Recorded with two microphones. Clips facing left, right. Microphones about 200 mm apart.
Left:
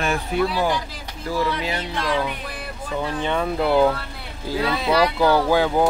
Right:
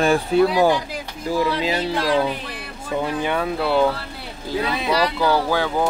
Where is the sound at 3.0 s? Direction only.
10° right (ahead or behind).